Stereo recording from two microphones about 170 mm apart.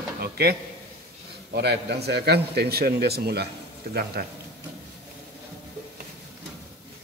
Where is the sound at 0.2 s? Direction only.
65° right (ahead or behind).